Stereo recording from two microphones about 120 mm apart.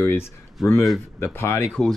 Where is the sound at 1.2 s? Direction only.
20° left (ahead or behind).